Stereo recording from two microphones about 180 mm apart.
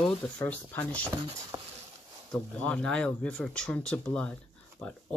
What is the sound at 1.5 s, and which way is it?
Patter, 25° right (ahead or behind).